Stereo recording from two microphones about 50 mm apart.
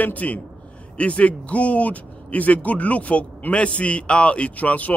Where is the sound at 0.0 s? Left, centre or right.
Left.